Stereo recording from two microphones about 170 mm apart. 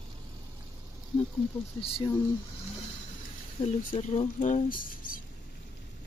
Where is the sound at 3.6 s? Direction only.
45° left (ahead or behind).